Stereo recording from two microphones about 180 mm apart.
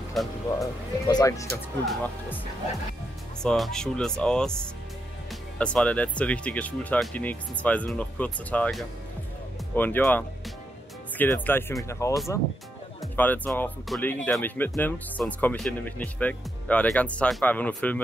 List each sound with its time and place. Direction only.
0.2 s speech: centre (ahead or behind)
0.6 s speech: 20° left (ahead or behind)
3.4 s speech: centre (ahead or behind)
5.6 s speech: 5° left (ahead or behind)
13.1 s speech: 10° left (ahead or behind)